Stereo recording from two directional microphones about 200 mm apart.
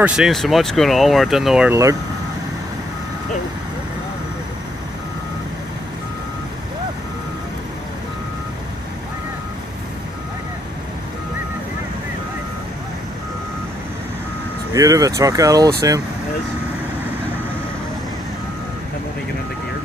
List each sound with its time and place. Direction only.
0.0 s speech: 5° right (ahead or behind)
14.7 s speech: 15° right (ahead or behind)